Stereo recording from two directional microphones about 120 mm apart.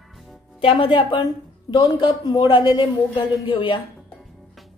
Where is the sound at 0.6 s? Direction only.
45° left (ahead or behind).